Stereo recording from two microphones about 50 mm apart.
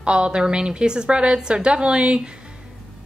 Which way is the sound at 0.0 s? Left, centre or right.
Right.